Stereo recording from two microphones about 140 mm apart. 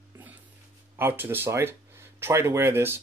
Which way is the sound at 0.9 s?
15° right (ahead or behind).